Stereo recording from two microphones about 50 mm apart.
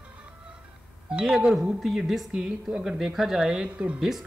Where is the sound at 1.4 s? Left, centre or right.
Centre; by 4.0 s right.